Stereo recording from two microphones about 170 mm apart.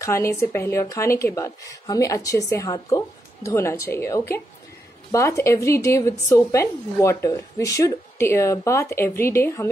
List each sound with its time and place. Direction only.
0.0 s a woman's voice: 15° left (ahead or behind)